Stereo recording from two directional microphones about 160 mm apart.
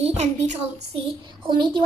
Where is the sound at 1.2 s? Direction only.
30° right (ahead or behind).